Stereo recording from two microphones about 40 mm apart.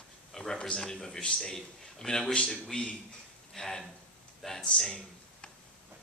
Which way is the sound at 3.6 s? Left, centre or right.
Centre.